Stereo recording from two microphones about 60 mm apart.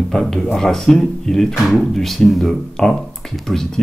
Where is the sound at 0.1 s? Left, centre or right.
Centre.